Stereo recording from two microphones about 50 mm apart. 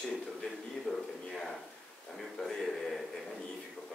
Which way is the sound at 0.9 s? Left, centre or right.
Centre.